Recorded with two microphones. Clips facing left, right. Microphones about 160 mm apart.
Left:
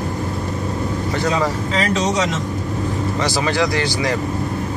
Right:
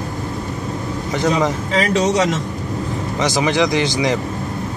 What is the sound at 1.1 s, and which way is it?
Speech, 15° right (ahead or behind).